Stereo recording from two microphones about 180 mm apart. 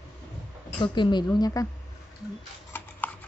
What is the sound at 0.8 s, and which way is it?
Speech, 25° left (ahead or behind).